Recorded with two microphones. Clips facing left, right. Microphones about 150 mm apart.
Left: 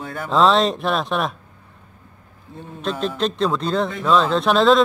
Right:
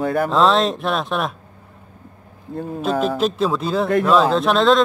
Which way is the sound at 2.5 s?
45° right (ahead or behind).